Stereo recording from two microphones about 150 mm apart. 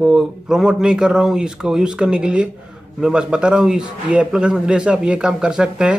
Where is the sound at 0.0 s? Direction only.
5° right (ahead or behind).